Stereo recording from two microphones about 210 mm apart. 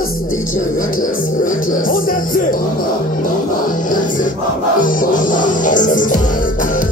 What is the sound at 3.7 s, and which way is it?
Music, 40° left (ahead or behind).